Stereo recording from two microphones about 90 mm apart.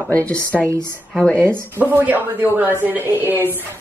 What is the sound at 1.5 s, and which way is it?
A woman's voice, 25° right (ahead or behind).